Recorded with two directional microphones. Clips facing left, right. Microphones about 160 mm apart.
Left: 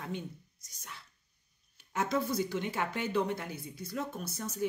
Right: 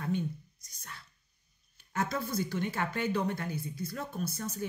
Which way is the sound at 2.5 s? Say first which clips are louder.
Right 1 dB; 15° left (ahead or behind).